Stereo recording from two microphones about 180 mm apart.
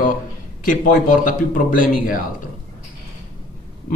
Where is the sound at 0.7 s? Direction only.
50° left (ahead or behind).